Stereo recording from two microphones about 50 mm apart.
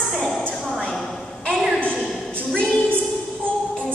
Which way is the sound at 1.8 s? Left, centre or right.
Left.